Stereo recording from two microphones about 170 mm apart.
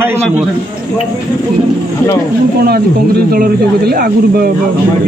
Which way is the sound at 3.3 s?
60° right (ahead or behind).